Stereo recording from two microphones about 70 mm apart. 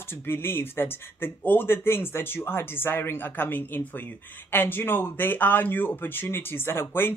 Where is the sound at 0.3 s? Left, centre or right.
Left.